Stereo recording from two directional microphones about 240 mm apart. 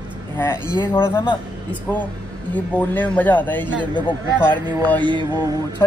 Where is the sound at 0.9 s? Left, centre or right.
Centre.